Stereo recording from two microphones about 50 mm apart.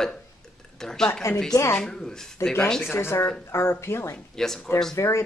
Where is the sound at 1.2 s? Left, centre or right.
Left.